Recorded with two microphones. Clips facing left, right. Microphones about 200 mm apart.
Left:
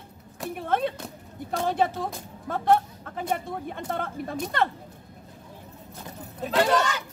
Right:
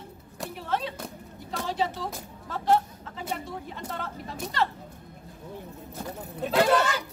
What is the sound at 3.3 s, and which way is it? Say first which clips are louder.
Speech: left 5 dB; 55° left (ahead or behind).